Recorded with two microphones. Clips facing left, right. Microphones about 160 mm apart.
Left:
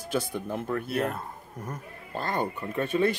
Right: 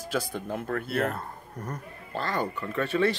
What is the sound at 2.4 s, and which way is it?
Speech, 20° left (ahead or behind).